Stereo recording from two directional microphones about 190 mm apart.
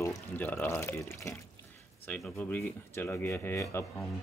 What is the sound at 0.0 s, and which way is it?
Speech, 10° left (ahead or behind).